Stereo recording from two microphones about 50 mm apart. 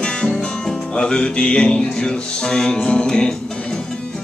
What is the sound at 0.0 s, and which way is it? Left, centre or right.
Music, centre.